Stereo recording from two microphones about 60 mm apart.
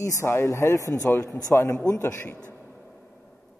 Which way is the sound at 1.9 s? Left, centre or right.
Left.